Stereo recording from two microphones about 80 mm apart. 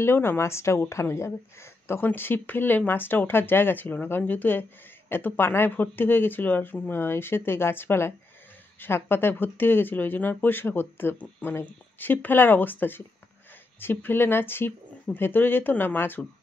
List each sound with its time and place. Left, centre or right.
0.0 s a woman's voice: left